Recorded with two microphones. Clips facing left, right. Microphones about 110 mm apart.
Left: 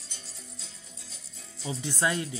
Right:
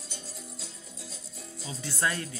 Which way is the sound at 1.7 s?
20° left (ahead or behind).